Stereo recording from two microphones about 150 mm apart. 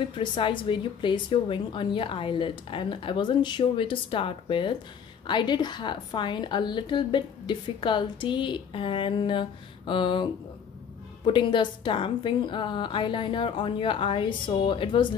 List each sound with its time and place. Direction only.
0.1 s a woman's voice: 35° left (ahead or behind)